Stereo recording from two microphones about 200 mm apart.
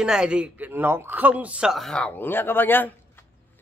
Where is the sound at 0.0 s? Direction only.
5° right (ahead or behind).